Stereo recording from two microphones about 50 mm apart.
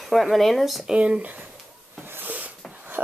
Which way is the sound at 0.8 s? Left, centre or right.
Right.